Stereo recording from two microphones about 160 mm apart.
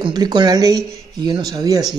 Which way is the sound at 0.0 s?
25° right (ahead or behind).